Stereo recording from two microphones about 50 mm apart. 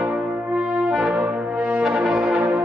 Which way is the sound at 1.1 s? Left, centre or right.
Right.